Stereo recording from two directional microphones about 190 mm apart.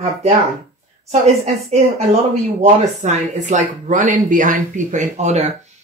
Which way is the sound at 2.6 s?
40° right (ahead or behind).